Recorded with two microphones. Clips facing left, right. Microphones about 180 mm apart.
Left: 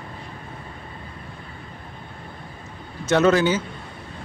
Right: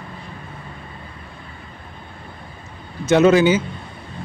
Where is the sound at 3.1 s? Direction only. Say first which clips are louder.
Right 4 dB; 10° right (ahead or behind).